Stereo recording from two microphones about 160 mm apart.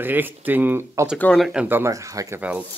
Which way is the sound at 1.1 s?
5° left (ahead or behind).